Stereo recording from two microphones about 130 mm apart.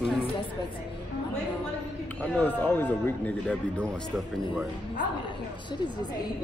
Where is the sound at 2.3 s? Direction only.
15° left (ahead or behind).